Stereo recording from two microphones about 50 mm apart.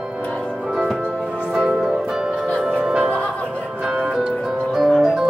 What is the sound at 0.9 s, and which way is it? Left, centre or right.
Music, centre.